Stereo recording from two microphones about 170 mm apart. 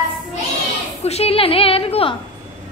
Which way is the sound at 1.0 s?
40° left (ahead or behind).